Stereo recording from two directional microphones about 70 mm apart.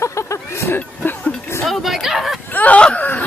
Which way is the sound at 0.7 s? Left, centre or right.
Left.